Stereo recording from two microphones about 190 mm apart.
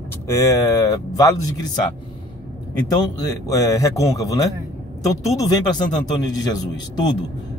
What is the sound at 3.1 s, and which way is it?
A man's voice, 15° left (ahead or behind).